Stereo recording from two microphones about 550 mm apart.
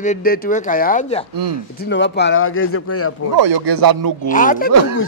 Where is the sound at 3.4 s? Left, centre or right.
Right.